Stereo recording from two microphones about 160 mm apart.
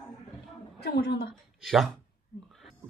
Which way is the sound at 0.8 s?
90° left.